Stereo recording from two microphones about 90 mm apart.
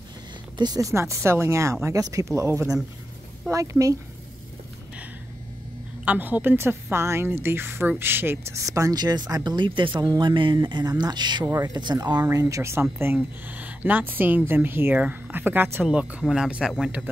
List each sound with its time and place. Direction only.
0.6 s speech: 45° right (ahead or behind)
6.0 s a woman's voice: 20° right (ahead or behind)
8.5 s speech: 35° right (ahead or behind); by 11.4 s 55° right (ahead or behind)
11.4 s speech: 35° right (ahead or behind)
11.7 s speech: 50° right (ahead or behind); by 12.8 s 35° right (ahead or behind)
13.0 s a woman's voice: 20° right (ahead or behind)
15.8 s speech: 15° right (ahead or behind)